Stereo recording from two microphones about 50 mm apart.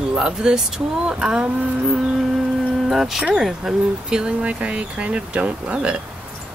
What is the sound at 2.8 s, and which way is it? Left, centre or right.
Speech, centre.